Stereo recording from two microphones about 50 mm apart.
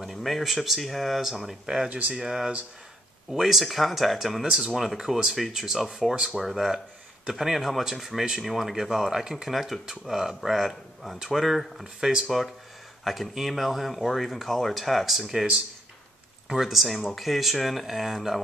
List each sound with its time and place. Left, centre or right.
0.0 s speech: centre
1.9 s speech: right
2.1 s speech: centre
16.4 s speech: centre